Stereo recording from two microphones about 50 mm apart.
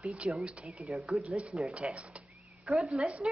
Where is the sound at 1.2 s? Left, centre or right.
Right.